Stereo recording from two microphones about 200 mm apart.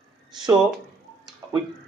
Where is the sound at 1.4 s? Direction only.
15° right (ahead or behind).